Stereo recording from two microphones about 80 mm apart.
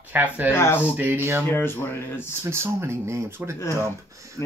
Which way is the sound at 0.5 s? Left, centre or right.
Left.